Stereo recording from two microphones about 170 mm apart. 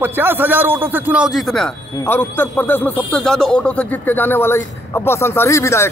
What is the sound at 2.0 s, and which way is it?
A man's voice, 10° left (ahead or behind).